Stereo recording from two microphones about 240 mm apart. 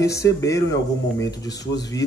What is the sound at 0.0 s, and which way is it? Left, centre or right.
Speech, centre.